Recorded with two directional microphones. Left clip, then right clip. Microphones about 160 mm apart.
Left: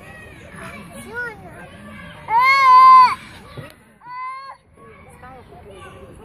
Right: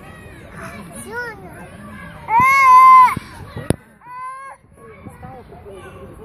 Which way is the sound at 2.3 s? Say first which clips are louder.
Right 2 dB; 25° right (ahead or behind).